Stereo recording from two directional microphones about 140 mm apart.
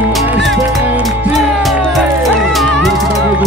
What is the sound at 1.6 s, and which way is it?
Music, centre (ahead or behind).